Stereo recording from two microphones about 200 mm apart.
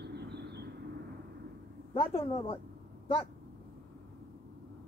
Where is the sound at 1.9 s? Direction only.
25° left (ahead or behind).